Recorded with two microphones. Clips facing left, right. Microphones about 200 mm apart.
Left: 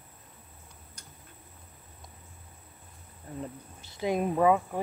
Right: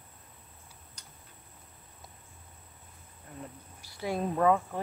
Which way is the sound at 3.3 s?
30° left (ahead or behind).